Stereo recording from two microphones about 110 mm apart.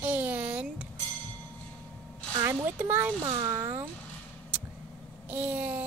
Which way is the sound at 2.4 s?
20° right (ahead or behind).